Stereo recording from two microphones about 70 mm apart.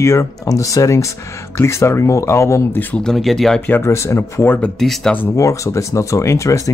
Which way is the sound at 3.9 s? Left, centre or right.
Left.